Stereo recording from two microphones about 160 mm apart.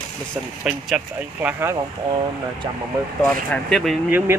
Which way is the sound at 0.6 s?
5° right (ahead or behind).